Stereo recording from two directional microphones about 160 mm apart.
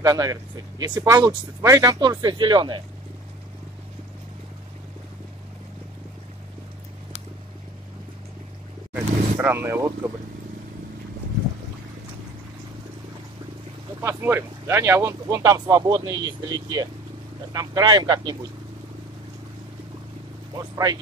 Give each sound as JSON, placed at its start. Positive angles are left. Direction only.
{"t": 0.0, "sound": "speech", "side_deg": -20}
{"t": 8.9, "sound": "vehicle", "side_deg": -10}
{"t": 14.0, "sound": "speech", "side_deg": -15}
{"t": 20.7, "sound": "speech", "side_deg": -25}